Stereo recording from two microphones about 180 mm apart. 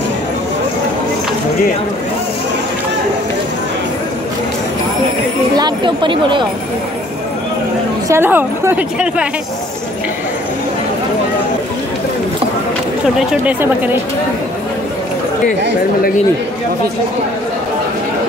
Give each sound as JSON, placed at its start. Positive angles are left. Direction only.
{"t": 5.6, "sound": "speech", "side_deg": -25}
{"t": 8.1, "sound": "a woman's voice", "side_deg": -10}
{"t": 13.3, "sound": "a woman's voice", "side_deg": -10}